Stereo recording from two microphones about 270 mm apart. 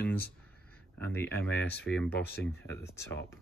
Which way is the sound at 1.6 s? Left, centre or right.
Left.